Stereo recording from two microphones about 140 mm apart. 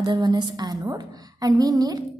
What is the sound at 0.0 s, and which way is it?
A woman's voice, 30° right (ahead or behind).